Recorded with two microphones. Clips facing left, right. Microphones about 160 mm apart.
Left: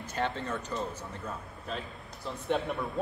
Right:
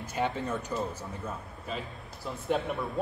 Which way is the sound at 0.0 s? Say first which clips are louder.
Right 2 dB; 10° right (ahead or behind).